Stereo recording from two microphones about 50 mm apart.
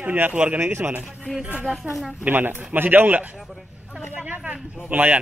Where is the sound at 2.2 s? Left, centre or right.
Right.